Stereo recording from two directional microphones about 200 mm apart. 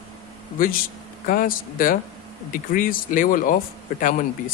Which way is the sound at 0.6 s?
45° left (ahead or behind).